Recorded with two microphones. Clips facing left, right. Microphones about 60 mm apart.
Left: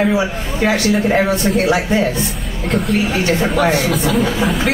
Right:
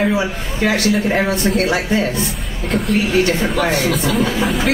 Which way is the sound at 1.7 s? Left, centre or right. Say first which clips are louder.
Left 2 dB; left.